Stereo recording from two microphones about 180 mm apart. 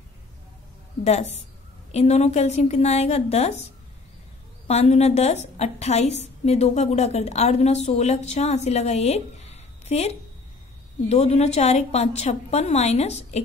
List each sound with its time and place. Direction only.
1.0 s a woman's voice: 40° left (ahead or behind)
4.6 s a woman's voice: 35° left (ahead or behind)